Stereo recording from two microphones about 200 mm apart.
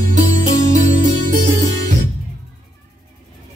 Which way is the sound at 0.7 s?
40° right (ahead or behind).